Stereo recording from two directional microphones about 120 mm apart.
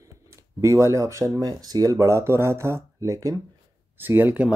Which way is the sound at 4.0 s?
15° right (ahead or behind).